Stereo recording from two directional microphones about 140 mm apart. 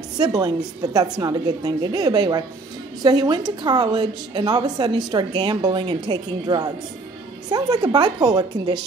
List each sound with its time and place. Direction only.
0.2 s a woman's voice: 25° right (ahead or behind)